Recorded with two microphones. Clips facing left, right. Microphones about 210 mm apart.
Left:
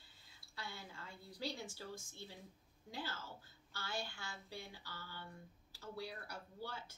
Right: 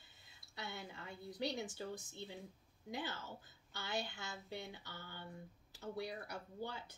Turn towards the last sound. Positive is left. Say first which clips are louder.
# right 3 dB
turn(degrees=-20)  # may be behind; listen again after turning